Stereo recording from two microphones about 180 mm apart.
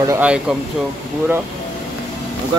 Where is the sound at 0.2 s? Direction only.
5° right (ahead or behind).